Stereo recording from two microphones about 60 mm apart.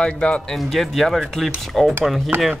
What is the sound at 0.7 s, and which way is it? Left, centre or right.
Speech, centre.